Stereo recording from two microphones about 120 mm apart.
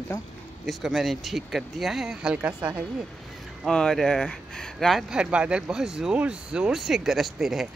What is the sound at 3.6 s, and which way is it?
Speech, 5° left (ahead or behind).